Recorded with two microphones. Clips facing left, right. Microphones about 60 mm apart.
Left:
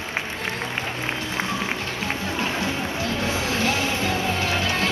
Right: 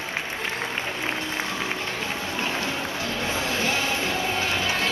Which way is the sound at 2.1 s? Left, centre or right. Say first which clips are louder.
Left 2 dB; centre.